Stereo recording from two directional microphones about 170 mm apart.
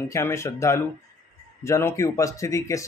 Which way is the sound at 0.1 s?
15° left (ahead or behind).